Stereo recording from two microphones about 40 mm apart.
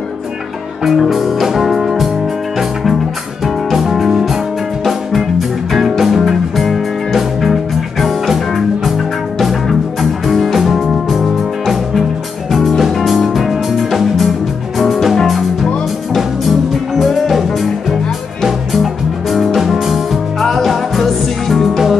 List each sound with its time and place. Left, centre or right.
0.8 s music: centre
4.1 s music: centre
5.7 s music: centre
16.9 s music: centre